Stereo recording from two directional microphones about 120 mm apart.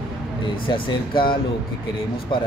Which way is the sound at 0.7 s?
45° left (ahead or behind).